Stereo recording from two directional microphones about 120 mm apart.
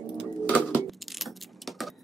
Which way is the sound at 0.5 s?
10° left (ahead or behind).